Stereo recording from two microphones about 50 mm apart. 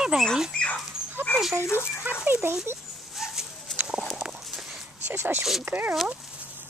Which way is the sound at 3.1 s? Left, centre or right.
Centre.